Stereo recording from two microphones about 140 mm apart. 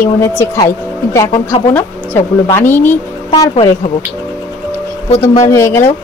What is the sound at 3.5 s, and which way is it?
Speech, 45° left (ahead or behind).